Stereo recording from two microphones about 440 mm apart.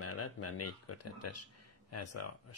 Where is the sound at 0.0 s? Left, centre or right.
Left.